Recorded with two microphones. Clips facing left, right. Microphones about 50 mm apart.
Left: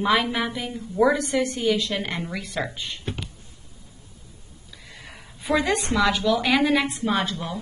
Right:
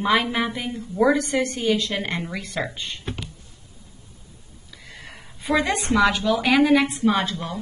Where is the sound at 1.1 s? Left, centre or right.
Centre.